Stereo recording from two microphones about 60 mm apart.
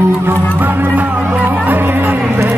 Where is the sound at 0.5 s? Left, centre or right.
Right.